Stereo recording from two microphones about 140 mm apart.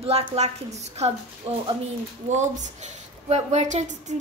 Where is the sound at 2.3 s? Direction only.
60° right (ahead or behind).